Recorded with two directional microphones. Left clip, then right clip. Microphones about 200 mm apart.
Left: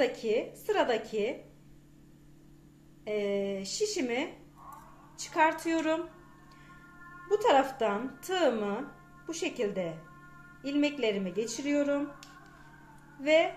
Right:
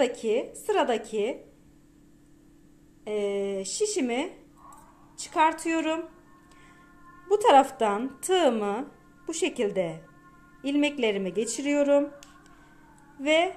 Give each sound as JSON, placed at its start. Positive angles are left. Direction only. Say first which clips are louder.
{"t": 0.2, "sound": "speech", "louder": "right 3 dB", "side_deg": -35}
{"t": 3.1, "sound": "speech", "louder": "right 3 dB", "side_deg": -35}
{"t": 7.2, "sound": "speech", "louder": "right 6 dB", "side_deg": -40}
{"t": 13.2, "sound": "speech", "louder": "right 2 dB", "side_deg": -40}